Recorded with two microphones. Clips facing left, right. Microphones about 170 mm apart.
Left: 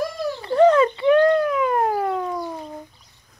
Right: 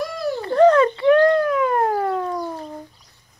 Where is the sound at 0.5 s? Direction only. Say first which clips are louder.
Right 1 dB; 10° left (ahead or behind).